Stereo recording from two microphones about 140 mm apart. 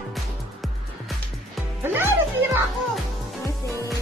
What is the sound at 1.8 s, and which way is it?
Music, 15° right (ahead or behind).